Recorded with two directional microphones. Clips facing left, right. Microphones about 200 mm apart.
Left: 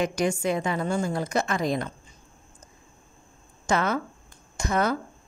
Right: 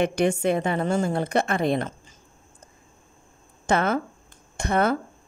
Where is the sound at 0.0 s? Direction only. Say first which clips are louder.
Right 3 dB; 55° right (ahead or behind).